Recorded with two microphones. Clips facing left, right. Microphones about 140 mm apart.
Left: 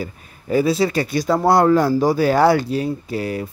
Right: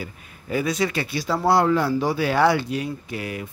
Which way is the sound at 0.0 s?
40° left (ahead or behind).